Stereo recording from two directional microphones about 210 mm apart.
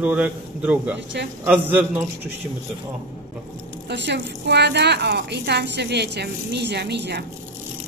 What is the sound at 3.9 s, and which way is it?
A woman's voice, 55° right (ahead or behind).